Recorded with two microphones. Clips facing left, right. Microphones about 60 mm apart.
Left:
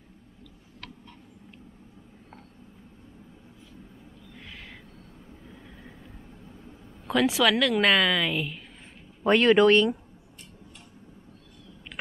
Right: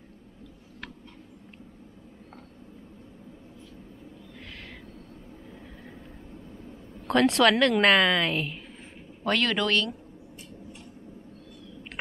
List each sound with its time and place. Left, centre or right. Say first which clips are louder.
7.1 s a woman's voice: right 2 dB; centre
9.2 s speech: left 7 dB; left